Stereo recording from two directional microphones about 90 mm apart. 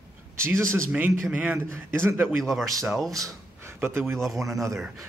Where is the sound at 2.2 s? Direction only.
Centre (ahead or behind).